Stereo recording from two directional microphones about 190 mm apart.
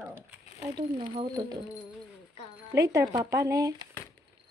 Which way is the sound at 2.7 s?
15° right (ahead or behind).